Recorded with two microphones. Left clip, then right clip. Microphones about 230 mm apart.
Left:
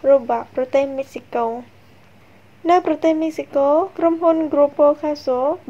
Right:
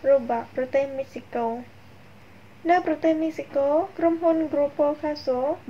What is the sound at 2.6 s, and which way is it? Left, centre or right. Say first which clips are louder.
Speech: left 5 dB; left.